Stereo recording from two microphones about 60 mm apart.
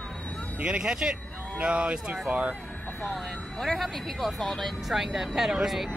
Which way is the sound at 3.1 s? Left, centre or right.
Centre.